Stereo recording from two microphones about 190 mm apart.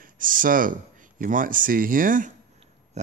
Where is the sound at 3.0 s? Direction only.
35° right (ahead or behind).